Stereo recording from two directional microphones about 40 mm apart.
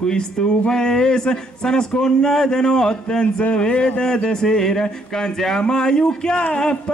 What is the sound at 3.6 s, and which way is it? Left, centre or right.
Speech, left.